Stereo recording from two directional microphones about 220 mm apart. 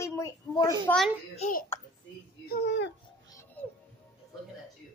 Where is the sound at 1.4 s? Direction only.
35° left (ahead or behind).